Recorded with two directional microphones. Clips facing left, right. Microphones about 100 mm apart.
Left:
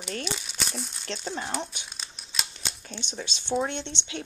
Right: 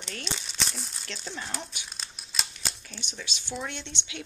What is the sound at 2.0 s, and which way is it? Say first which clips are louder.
Scissors: even; centre (ahead or behind).